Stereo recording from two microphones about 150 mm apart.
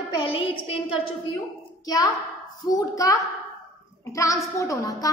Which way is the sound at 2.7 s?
25° left (ahead or behind).